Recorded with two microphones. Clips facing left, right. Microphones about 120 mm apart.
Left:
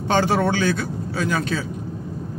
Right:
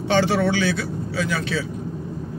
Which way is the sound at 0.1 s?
45° left (ahead or behind).